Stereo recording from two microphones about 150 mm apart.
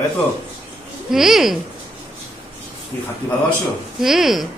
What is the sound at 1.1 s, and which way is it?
Speech, centre (ahead or behind).